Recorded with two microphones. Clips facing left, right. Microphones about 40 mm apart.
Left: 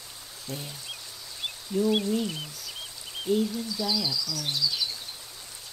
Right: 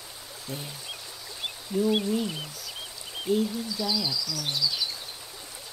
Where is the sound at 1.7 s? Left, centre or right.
Centre.